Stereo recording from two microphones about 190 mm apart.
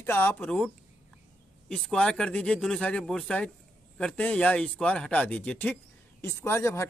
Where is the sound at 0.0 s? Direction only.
10° left (ahead or behind).